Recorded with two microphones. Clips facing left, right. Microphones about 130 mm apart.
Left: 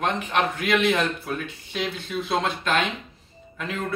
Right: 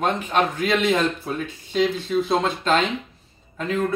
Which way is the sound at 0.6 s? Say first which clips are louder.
Right 2 dB; 25° right (ahead or behind).